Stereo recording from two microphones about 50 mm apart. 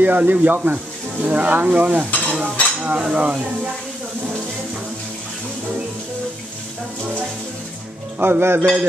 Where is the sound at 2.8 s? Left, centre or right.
Right.